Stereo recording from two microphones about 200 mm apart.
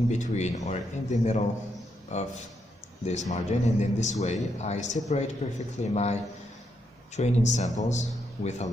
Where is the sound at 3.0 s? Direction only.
35° left (ahead or behind).